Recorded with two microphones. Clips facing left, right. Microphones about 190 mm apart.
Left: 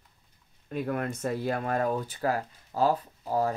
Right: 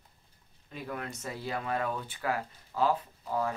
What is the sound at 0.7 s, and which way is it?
Speech, 55° left (ahead or behind).